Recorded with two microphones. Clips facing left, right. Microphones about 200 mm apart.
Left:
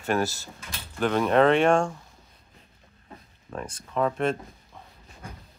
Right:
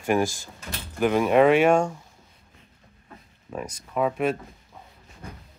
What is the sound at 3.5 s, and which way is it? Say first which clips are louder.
Speech: right 1 dB; 10° right (ahead or behind).